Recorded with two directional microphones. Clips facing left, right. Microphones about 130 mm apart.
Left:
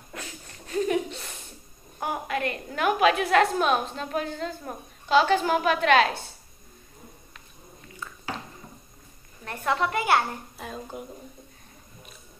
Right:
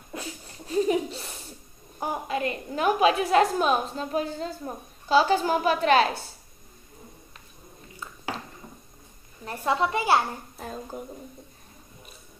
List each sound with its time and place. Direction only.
0.7 s chuckle: 25° right (ahead or behind)
1.2 s a sound: centre (ahead or behind)
2.0 s a woman's voice: 25° right (ahead or behind)
9.5 s a child's voice: 30° right (ahead or behind)